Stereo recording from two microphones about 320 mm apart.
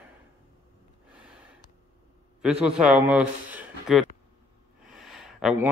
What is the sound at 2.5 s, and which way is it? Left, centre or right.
Speech, centre.